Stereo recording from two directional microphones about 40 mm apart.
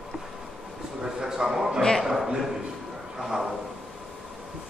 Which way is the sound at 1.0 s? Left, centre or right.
Centre.